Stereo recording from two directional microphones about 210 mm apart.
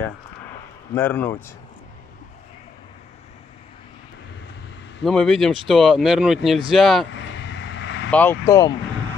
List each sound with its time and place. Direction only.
0.9 s speech: 10° left (ahead or behind)
5.0 s speech: 5° left (ahead or behind)
7.1 s vehicle: 55° left (ahead or behind)
8.1 s speech: 10° left (ahead or behind)